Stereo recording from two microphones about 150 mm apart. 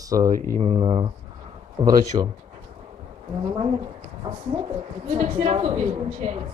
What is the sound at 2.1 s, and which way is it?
Speech, 35° right (ahead or behind).